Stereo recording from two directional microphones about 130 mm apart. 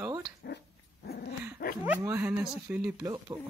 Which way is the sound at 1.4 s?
15° right (ahead or behind).